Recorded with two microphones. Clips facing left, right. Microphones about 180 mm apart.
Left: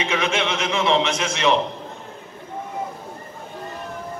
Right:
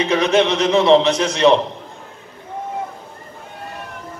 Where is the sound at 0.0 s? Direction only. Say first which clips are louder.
Right 7 dB; 35° right (ahead or behind).